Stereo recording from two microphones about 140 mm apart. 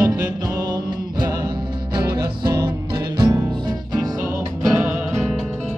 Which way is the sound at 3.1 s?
30° right (ahead or behind).